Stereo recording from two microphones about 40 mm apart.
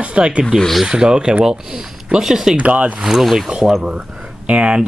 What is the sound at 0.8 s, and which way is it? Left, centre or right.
Speech, centre.